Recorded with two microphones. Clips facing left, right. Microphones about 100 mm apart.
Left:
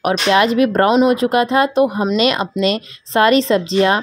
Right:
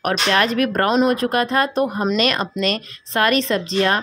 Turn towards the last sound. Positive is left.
turn(degrees=20)  # may be behind; listen again after turning